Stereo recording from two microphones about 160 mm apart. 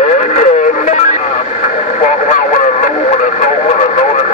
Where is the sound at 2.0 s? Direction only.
50° left (ahead or behind).